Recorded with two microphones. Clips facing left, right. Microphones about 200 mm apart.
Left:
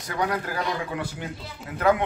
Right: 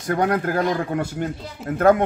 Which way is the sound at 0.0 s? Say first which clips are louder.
Right 7 dB; 50° right (ahead or behind).